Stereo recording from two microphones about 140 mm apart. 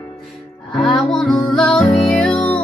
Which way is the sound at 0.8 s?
Centre (ahead or behind).